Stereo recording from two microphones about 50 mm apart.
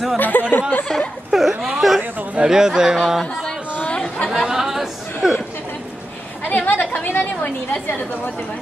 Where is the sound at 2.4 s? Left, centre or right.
Centre.